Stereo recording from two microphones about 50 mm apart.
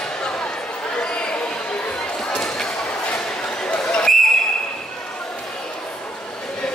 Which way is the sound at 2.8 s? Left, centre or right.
Left.